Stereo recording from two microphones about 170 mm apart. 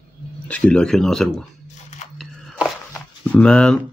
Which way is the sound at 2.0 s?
45° left (ahead or behind).